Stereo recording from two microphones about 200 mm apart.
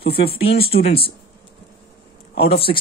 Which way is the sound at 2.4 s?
30° left (ahead or behind).